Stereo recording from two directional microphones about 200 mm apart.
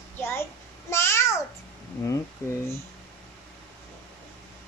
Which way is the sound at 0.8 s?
15° left (ahead or behind).